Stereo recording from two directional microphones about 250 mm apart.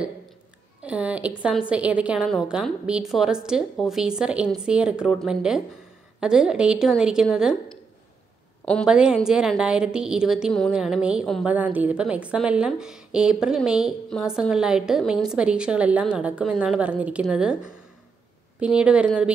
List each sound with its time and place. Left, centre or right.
0.8 s a woman's voice: centre